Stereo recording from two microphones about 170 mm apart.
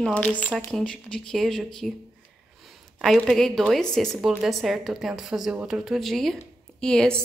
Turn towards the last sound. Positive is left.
turn(degrees=5)  # may be behind; listen again after turning